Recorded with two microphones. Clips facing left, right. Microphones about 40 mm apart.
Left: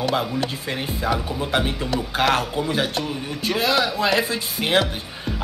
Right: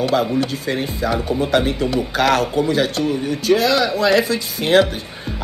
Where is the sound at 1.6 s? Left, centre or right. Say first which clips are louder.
Right 5 dB; left.